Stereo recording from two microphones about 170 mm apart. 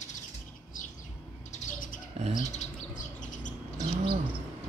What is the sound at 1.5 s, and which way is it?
Bird, 50° left (ahead or behind).